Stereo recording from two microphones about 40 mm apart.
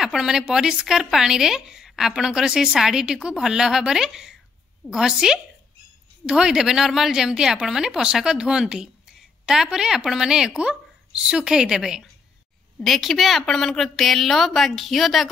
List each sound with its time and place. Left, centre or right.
0.0 s a sound: centre
0.3 s speech: centre
1.9 s a sound: centre
2.1 s a woman's voice: centre
12.8 s a woman's voice: centre
13.5 s a woman's voice: centre